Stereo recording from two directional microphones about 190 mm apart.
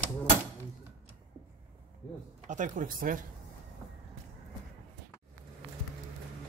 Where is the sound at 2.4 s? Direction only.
40° right (ahead or behind).